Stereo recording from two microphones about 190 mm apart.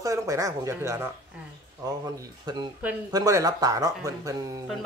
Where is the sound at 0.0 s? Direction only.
15° right (ahead or behind).